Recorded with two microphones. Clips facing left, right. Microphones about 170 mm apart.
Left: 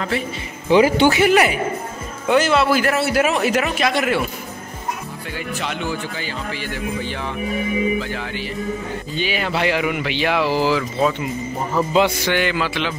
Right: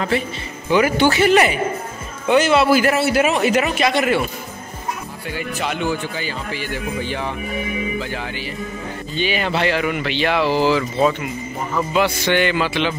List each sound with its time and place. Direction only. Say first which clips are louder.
0.7 s speech: left 2 dB; 25° left (ahead or behind); by 4.2 s centre (ahead or behind)
5.6 s speech: right 4 dB; 10° right (ahead or behind)
8.1 s speech: left 1 dB; 5° right (ahead or behind)
11.7 s speech: left 2 dB; 30° left (ahead or behind)
12.3 s speech: right 2 dB; centre (ahead or behind)